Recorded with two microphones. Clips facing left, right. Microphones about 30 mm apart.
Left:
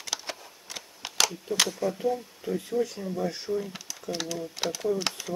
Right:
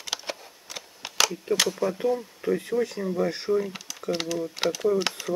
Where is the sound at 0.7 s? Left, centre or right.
Centre.